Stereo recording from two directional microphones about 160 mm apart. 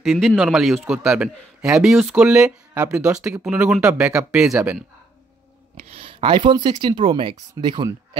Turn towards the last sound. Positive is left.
turn(degrees=-25)  # may be behind; listen again after turning